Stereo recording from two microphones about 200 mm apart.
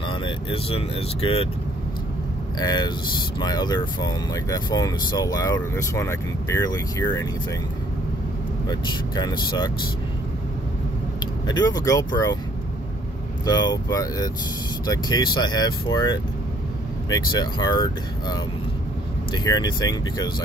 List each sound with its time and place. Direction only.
0.1 s speech: 25° left (ahead or behind)
2.6 s speech: 20° left (ahead or behind)
8.6 s speech: 20° left (ahead or behind)
11.4 s speech: 20° left (ahead or behind)
13.5 s speech: 20° left (ahead or behind)
19.3 s speech: 20° left (ahead or behind)